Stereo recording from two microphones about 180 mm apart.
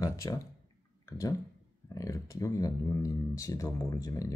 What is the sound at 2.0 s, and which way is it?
Speech, 15° left (ahead or behind).